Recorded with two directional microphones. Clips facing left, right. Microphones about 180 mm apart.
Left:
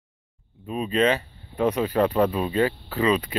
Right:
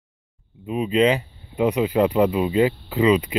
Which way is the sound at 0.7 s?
15° right (ahead or behind).